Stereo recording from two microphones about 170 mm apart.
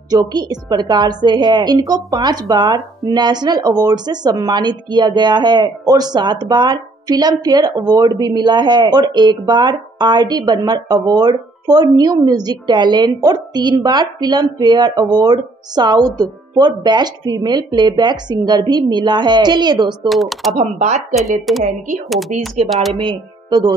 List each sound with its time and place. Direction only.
0.1 s a woman's voice: 25° right (ahead or behind)
20.1 s speech: centre (ahead or behind)
20.5 s speech: 40° right (ahead or behind)
21.2 s speech: centre (ahead or behind)
22.3 s speech: 45° right (ahead or behind)
22.7 s speech: centre (ahead or behind)
23.0 s speech: 25° right (ahead or behind)